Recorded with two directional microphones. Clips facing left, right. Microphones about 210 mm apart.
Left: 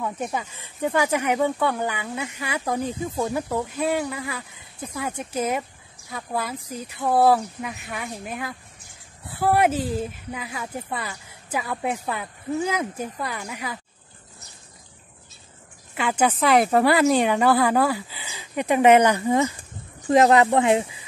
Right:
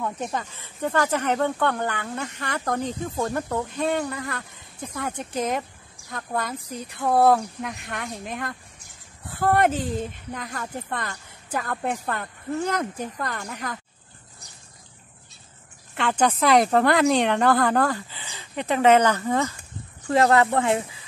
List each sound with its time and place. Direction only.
0.0 s speech: 5° left (ahead or behind)
15.9 s speech: 5° left (ahead or behind)